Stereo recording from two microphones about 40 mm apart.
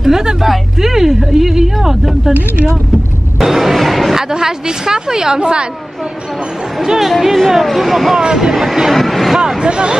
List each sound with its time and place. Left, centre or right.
0.0 s a sound: centre
0.4 s speech: centre
3.3 s speech: centre
4.2 s speech: centre
6.8 s speech: centre
8.2 s speech: centre
8.5 s speech: centre
9.6 s speech: right